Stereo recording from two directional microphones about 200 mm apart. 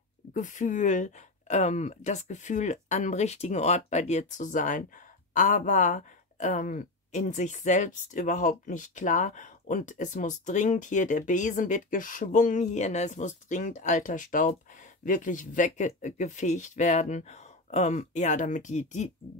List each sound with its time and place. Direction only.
0.3 s speech: 40° left (ahead or behind)